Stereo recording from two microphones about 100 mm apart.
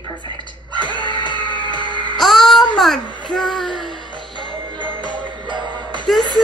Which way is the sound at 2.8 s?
Centre (ahead or behind).